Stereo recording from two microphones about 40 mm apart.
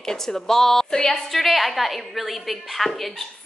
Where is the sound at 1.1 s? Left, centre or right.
Centre.